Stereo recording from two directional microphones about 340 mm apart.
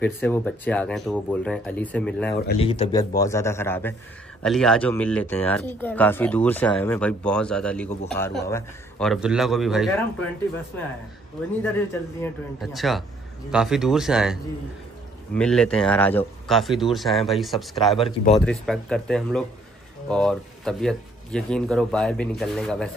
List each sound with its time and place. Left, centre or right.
0.0 s a man's voice: centre
12.2 s speech: centre
17.9 s a man's voice: centre
18.4 s speech: centre